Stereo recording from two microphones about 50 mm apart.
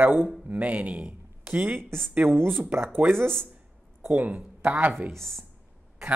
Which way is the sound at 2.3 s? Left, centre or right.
Right.